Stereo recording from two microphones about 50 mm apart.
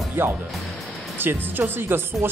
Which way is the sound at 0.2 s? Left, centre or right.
Right.